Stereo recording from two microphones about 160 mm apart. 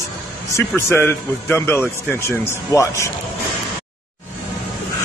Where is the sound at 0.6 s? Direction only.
15° left (ahead or behind).